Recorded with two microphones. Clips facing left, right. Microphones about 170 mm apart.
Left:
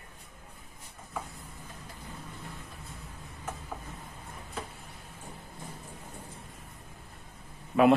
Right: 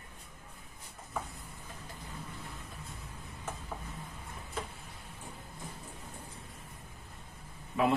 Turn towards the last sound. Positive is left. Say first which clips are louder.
# left 7 dB
turn(degrees=60)  # may be behind; listen again after turning